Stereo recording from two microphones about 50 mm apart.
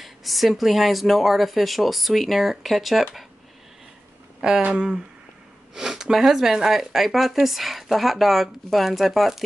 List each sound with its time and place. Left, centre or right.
0.0 s speech: centre
4.4 s speech: centre
5.8 s speech: centre